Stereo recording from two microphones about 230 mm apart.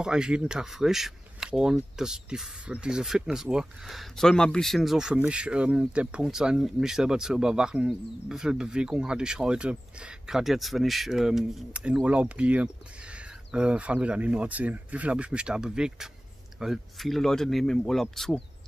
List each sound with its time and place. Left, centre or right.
0.0 s speech: centre